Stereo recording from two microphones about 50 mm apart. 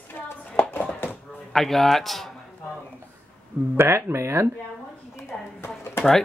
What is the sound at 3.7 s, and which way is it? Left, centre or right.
Speech, right.